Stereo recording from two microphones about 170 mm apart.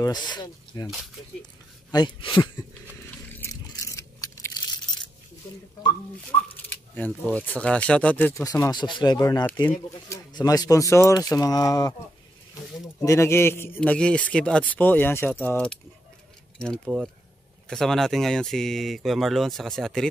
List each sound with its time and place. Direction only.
0.0 s speech: 25° left (ahead or behind)
0.8 s speech: centre (ahead or behind)
1.4 s speech: 25° left (ahead or behind)
3.7 s biting: 20° left (ahead or behind)
6.2 s speech: 10° left (ahead or behind)
8.4 s a man's voice: 20° left (ahead or behind); by 20.1 s 5° left (ahead or behind)